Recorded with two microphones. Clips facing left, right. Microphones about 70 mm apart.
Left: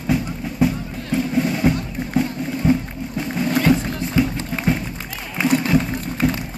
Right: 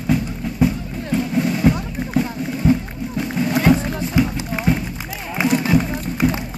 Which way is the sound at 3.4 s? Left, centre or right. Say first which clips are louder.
Right 1 dB; centre.